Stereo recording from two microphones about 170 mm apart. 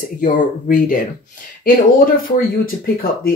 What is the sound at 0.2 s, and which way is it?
Speech, 50° left (ahead or behind).